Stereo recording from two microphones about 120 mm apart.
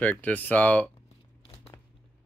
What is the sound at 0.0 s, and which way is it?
Speech, 15° left (ahead or behind).